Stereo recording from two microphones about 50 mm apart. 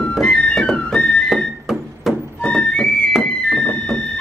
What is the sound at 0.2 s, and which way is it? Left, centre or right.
Music, centre.